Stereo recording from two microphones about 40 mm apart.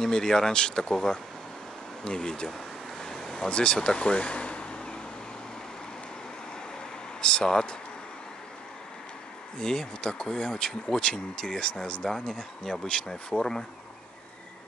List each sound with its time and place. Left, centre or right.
0.0 s speech: centre
3.0 s vehicle: centre
3.4 s speech: left
7.2 s speech: left
9.6 s speech: centre